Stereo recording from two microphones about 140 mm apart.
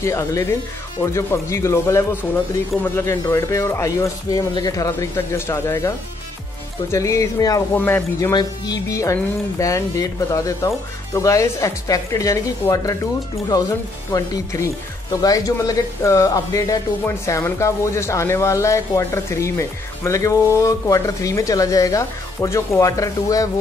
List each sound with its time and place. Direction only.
0.0 s speech: 20° left (ahead or behind)
8.3 s speech: 30° left (ahead or behind)